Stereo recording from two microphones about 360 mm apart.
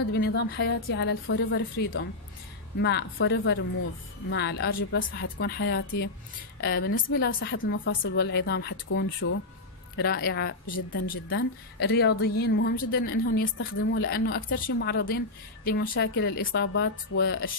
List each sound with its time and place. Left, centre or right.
0.1 s a woman's voice: left